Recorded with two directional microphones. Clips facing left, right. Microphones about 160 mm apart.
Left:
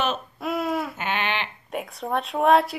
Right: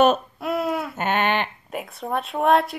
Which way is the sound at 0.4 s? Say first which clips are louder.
Right 1 dB; centre (ahead or behind).